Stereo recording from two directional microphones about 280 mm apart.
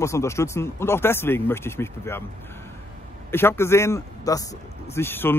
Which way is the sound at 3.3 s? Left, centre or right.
Centre.